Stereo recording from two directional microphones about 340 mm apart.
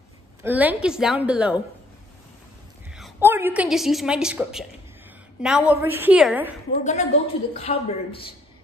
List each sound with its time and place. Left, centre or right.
0.4 s a woman's voice: centre
3.0 s a woman's voice: centre
6.8 s a woman's voice: left